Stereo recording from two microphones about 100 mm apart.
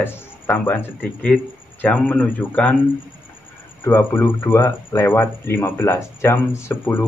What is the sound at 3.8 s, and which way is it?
Speech, 20° left (ahead or behind).